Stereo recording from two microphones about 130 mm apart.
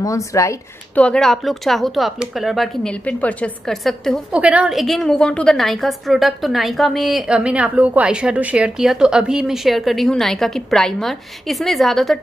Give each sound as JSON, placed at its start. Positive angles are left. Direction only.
{"t": 0.0, "sound": "speech", "side_deg": 25}
{"t": 0.9, "sound": "a woman's voice", "side_deg": 10}
{"t": 4.3, "sound": "a woman's voice", "side_deg": -10}